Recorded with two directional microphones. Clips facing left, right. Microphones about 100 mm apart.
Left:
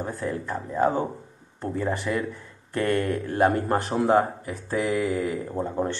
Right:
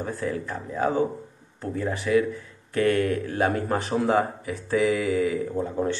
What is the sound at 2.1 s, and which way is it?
Speech, 15° left (ahead or behind).